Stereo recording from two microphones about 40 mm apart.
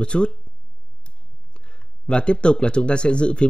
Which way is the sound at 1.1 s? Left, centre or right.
Left.